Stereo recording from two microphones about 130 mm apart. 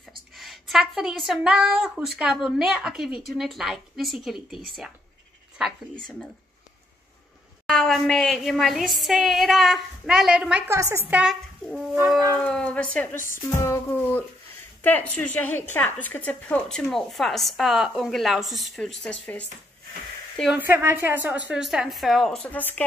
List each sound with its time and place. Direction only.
0.4 s a woman's voice: centre (ahead or behind)
7.6 s a woman's voice: centre (ahead or behind)
10.7 s a woman's voice: 20° right (ahead or behind)
12.4 s a woman's voice: 10° left (ahead or behind)
13.4 s music: 25° left (ahead or behind)
14.8 s a woman's voice: 15° left (ahead or behind)
20.5 s a woman's voice: 15° right (ahead or behind); by 22.8 s 15° left (ahead or behind)